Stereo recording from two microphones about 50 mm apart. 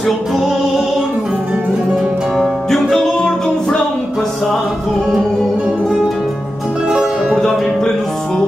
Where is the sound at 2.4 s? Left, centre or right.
Centre.